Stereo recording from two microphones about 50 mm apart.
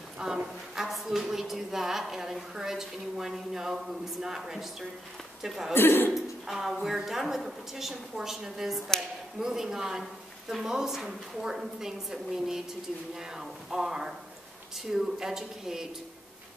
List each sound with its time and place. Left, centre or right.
0.2 s a woman's voice: centre
5.8 s a man's voice: left
6.1 s a woman's voice: centre